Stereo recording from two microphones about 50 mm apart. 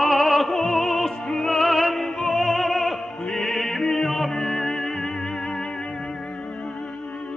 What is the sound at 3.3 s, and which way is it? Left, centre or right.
Music, centre.